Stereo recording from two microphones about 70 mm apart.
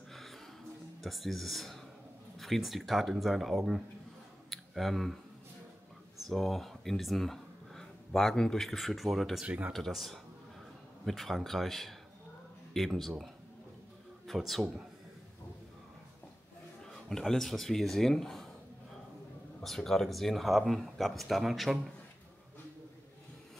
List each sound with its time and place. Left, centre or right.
0.1 s music: centre
1.0 s speech: centre
4.5 s clicking: centre
6.2 s speech: centre
9.4 s speech: right
9.7 s a man's voice: centre
16.8 s speech: centre
19.6 s speech: centre